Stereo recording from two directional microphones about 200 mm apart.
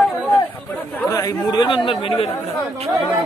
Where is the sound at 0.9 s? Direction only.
15° left (ahead or behind).